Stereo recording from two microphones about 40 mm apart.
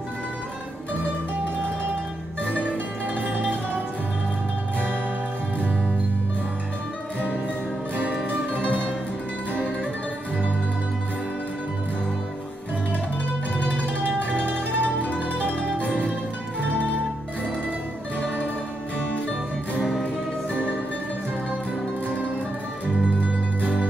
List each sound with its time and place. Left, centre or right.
3.2 s music: right
8.0 s music: right
14.8 s music: left